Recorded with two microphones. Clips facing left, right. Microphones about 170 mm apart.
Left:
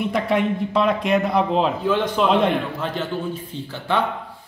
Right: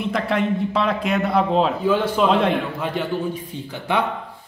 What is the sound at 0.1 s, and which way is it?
A man's voice, centre (ahead or behind).